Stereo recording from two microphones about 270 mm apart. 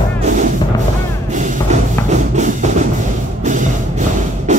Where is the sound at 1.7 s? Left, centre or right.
Right.